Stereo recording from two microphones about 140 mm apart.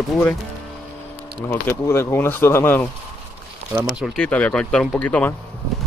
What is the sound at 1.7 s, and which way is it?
Speech, 15° left (ahead or behind).